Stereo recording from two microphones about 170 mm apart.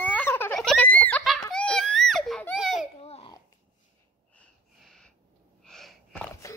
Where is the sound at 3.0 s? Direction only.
35° left (ahead or behind).